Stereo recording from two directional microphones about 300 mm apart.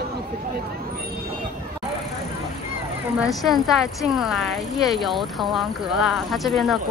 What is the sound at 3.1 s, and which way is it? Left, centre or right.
Speech, centre.